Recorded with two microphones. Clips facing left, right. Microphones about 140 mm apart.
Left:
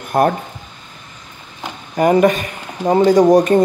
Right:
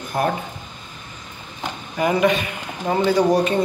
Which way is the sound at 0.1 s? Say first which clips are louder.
Left 7 dB; 50° left (ahead or behind).